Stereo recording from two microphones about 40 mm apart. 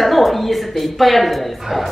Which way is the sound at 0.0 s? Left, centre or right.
Centre.